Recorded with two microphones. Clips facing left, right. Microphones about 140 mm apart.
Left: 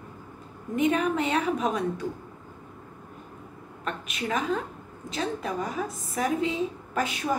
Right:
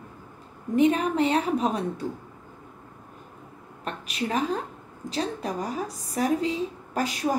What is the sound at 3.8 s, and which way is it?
A woman's voice, 35° right (ahead or behind).